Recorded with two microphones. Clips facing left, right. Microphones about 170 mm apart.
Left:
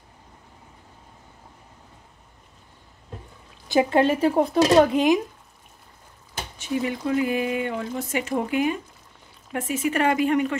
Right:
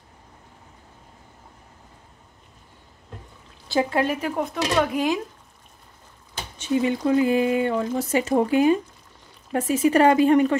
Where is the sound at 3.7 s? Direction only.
20° left (ahead or behind).